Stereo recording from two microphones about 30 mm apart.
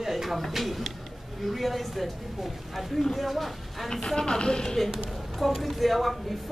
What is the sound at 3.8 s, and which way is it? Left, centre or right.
Speech, centre.